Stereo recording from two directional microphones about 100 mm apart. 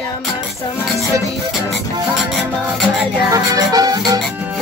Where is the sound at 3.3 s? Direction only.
40° right (ahead or behind).